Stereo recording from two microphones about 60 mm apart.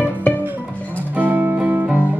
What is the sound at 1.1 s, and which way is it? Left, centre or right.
Music, right.